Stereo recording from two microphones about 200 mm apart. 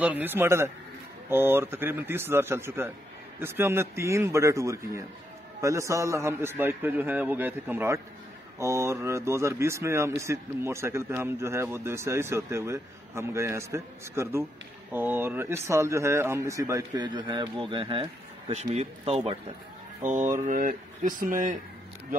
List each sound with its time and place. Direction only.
0.0 s speech: 10° right (ahead or behind); by 19.3 s 30° right (ahead or behind)
20.2 s speech: 40° right (ahead or behind)